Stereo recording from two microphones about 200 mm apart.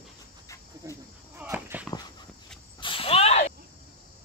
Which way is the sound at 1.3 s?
10° right (ahead or behind).